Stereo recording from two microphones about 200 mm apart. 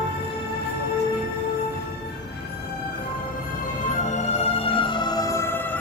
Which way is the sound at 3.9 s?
35° left (ahead or behind).